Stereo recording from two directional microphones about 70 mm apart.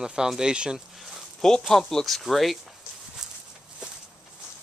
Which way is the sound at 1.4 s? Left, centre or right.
Centre.